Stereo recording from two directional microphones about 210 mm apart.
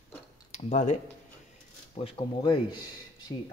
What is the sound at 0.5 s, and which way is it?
Speech, 35° left (ahead or behind).